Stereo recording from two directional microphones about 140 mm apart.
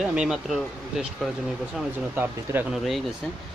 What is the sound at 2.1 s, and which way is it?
Speech, 15° right (ahead or behind).